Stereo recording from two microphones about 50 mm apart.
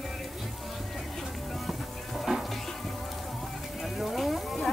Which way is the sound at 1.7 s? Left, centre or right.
Centre.